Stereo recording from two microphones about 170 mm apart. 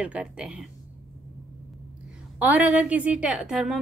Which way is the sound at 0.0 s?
5° right (ahead or behind).